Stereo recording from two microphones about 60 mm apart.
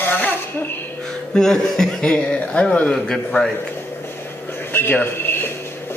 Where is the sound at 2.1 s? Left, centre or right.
Centre.